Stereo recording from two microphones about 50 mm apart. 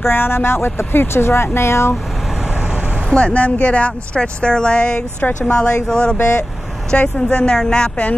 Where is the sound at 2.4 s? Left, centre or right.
Centre.